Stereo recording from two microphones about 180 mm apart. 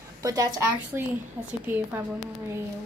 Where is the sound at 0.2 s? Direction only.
20° right (ahead or behind).